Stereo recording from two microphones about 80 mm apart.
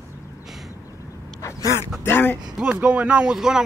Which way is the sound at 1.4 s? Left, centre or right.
Left.